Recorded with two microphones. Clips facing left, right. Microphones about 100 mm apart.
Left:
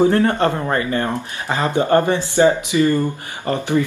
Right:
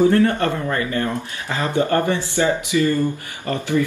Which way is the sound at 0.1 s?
30° left (ahead or behind).